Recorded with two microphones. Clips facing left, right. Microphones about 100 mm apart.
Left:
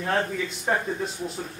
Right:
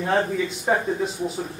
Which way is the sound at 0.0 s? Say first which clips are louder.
Right 4 dB; 5° right (ahead or behind).